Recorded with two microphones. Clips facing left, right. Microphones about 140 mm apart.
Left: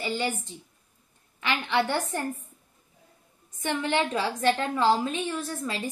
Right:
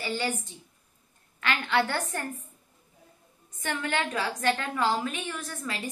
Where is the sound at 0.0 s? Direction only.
20° left (ahead or behind).